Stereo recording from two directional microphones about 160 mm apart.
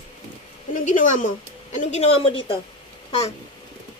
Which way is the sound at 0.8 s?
50° left (ahead or behind).